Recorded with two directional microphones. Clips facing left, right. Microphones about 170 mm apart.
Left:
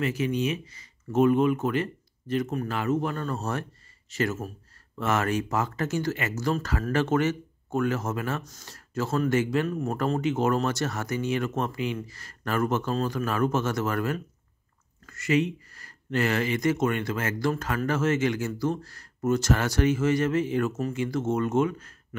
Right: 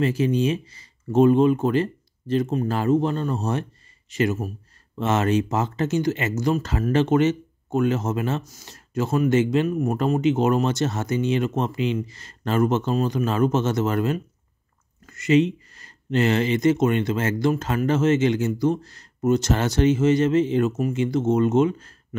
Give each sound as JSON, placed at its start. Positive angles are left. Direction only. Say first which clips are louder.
{"t": 0.0, "sound": "speech", "louder": "right 5 dB", "side_deg": -30}